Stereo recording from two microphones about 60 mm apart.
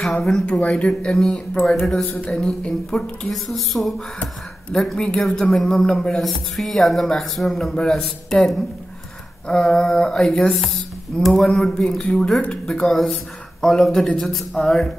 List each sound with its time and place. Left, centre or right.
0.0 s speech: centre
0.5 s speech: left
1.2 s a sound: centre
1.8 s speech: centre
2.0 s speech: left
2.4 s speech: centre
9.5 s a sound: centre
12.8 s speech: centre